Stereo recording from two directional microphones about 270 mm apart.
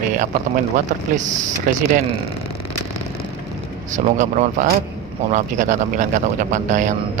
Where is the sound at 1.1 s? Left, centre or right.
Right.